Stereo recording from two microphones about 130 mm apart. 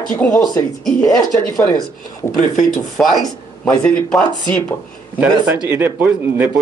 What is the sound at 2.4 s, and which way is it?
Speech, 75° left (ahead or behind).